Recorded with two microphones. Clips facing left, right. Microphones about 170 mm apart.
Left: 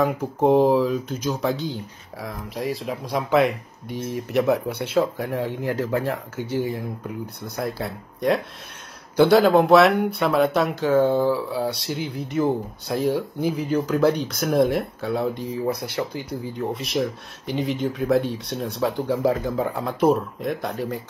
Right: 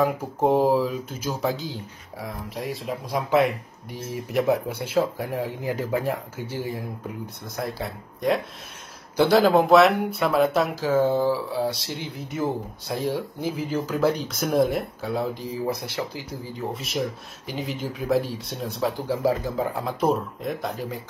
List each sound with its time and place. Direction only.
0.0 s speech: centre (ahead or behind)
3.9 s speech: 70° left (ahead or behind)
4.9 s speech: centre (ahead or behind)
5.3 s speech: 75° left (ahead or behind)
5.7 s speech: 10° right (ahead or behind)
6.5 s speech: centre (ahead or behind)